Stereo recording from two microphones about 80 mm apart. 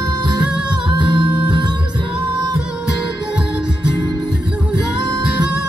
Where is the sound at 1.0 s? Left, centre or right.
Right.